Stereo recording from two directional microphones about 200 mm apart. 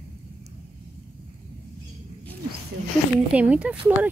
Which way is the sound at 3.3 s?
5° right (ahead or behind).